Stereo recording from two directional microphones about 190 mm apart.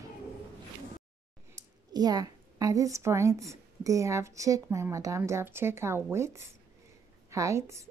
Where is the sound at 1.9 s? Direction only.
20° right (ahead or behind).